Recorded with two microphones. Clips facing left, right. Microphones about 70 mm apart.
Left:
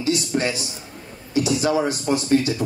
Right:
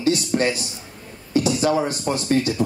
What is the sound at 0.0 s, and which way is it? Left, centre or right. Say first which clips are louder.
Speech: right 2 dB; right.